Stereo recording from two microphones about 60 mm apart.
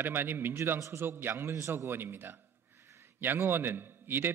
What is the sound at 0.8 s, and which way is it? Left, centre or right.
Speech, right.